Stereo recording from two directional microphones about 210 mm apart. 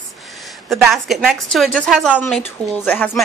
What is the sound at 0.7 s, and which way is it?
A woman's voice, centre (ahead or behind).